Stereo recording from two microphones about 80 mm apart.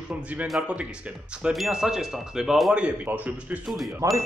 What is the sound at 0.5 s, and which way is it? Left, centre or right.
Speech, centre.